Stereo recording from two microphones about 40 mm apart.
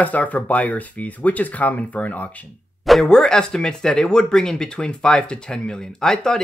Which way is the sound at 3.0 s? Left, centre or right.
Centre.